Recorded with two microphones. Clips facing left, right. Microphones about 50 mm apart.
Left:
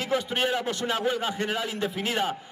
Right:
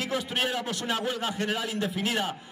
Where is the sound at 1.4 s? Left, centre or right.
Centre.